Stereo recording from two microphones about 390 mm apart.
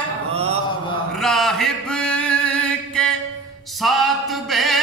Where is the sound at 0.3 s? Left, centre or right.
Centre.